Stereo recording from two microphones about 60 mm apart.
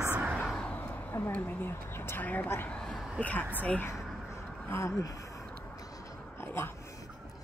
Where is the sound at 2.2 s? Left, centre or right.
Left.